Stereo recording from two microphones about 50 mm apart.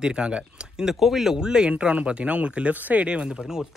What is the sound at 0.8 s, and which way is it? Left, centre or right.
Speech, centre.